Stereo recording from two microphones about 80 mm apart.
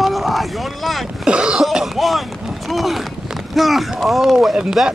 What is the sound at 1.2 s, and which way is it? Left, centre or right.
Speech, centre.